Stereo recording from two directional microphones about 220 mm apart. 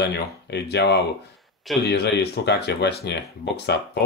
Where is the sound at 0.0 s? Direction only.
50° left (ahead or behind).